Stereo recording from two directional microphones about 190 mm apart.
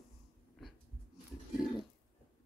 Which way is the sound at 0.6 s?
Centre (ahead or behind).